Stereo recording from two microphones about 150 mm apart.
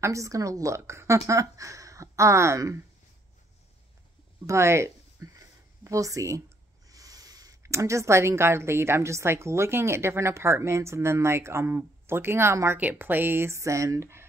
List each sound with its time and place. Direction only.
0.0 s a woman's voice: 20° right (ahead or behind)
4.5 s a sound: 20° right (ahead or behind)
6.9 s speech: 25° right (ahead or behind)